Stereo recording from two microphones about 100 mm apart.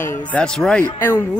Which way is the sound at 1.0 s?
25° left (ahead or behind).